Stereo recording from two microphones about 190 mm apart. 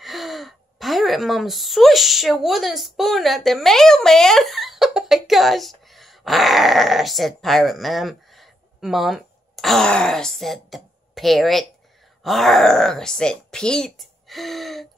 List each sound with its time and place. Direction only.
0.0 s speech: centre (ahead or behind)